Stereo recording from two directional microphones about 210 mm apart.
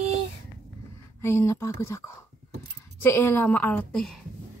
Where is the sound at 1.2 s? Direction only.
15° left (ahead or behind).